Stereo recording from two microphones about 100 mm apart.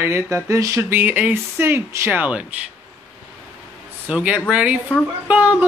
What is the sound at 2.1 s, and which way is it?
Speech, 15° right (ahead or behind).